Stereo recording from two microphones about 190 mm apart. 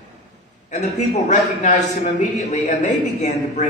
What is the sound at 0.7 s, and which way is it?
A man's voice, 40° left (ahead or behind).